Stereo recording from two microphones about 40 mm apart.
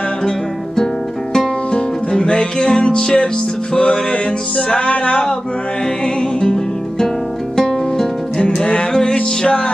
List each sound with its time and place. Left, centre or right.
1.3 s music: centre; by 5.2 s left
6.0 s music: centre